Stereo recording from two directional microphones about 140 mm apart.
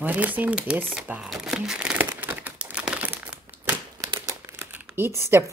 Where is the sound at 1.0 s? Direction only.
5° right (ahead or behind).